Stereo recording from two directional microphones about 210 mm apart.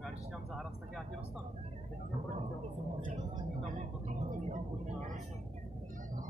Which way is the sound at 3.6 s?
35° right (ahead or behind).